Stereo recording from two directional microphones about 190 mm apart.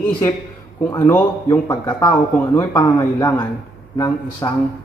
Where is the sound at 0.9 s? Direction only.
15° left (ahead or behind).